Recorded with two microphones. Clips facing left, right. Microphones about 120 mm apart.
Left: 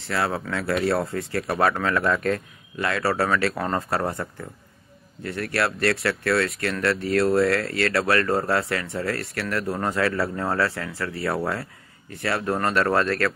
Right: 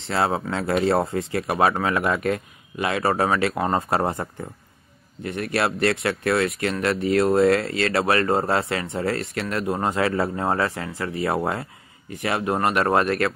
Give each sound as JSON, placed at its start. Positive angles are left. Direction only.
{"t": 0.0, "sound": "speech", "side_deg": -25}